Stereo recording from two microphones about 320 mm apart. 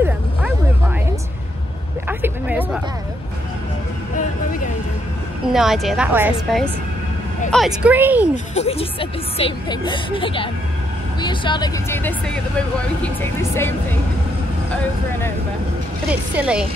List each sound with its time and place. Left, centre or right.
2.0 s a sound: centre
5.5 s a woman's voice: centre
8.5 s speech: centre
16.1 s a woman's voice: centre